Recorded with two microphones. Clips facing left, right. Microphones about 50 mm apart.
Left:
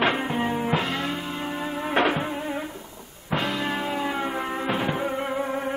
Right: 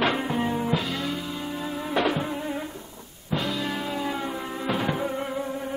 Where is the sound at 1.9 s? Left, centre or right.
Left.